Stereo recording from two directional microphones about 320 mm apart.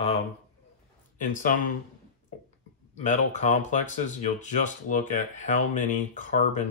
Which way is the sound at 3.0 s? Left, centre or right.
Left.